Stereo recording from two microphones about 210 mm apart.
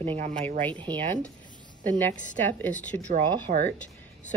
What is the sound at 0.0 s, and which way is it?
Speech, 25° right (ahead or behind).